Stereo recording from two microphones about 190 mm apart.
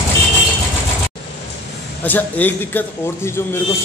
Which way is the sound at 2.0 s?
10° left (ahead or behind).